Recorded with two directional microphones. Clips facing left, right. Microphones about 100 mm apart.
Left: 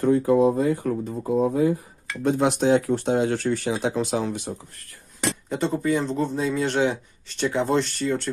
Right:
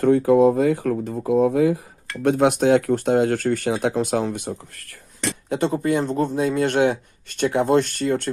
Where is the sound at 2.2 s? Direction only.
60° right (ahead or behind).